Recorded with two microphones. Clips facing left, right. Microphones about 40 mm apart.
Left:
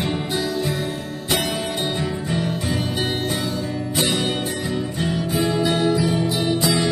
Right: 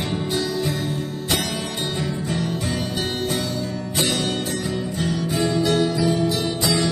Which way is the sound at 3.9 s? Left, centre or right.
Centre.